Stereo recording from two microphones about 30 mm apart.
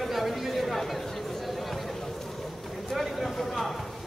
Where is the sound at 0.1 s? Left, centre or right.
Centre.